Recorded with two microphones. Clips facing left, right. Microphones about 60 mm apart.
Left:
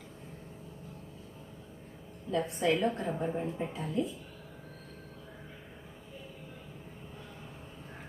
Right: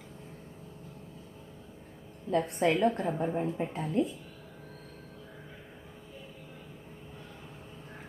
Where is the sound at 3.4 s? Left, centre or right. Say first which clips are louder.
Right 3 dB; right.